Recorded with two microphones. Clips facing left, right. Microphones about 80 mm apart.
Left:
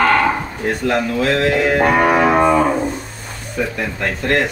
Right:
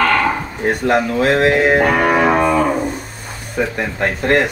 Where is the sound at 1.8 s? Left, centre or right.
Centre.